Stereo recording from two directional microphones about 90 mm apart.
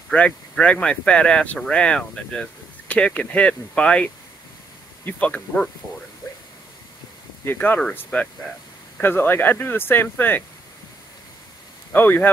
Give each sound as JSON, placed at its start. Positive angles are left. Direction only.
{"t": 0.1, "sound": "speech", "side_deg": 15}
{"t": 7.4, "sound": "speech", "side_deg": 20}
{"t": 11.9, "sound": "speech", "side_deg": 20}